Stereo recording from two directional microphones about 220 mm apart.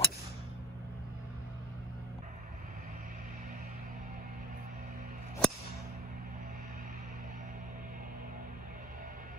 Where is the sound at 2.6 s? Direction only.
40° right (ahead or behind).